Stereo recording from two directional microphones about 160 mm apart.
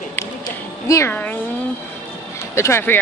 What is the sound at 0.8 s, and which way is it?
Speech, 15° left (ahead or behind).